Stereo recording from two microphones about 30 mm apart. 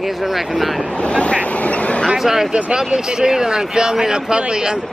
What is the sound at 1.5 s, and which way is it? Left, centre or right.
Speech, left.